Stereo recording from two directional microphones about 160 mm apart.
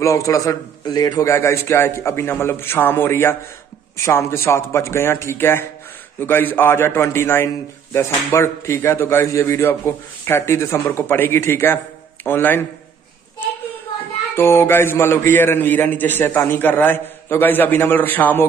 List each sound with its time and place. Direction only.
0.0 s a man's voice: 20° left (ahead or behind)
14.3 s a man's voice: 15° left (ahead or behind)